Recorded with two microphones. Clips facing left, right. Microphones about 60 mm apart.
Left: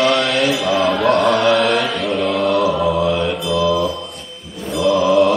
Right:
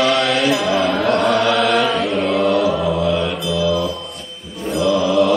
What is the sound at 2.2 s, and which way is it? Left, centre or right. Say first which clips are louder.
Chant: left 1 dB; right.